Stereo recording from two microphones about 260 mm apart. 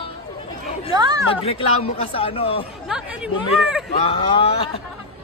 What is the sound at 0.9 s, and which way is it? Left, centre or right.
Speech, centre.